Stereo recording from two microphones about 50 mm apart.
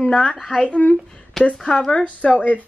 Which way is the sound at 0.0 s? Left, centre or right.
Left.